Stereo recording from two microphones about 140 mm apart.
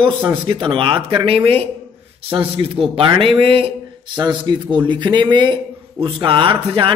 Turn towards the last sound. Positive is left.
turn(degrees=-35)  # may be behind; listen again after turning